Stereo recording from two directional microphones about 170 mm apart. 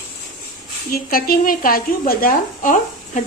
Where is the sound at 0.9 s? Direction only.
60° left (ahead or behind).